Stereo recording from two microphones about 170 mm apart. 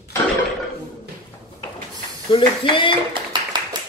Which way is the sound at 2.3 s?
30° left (ahead or behind).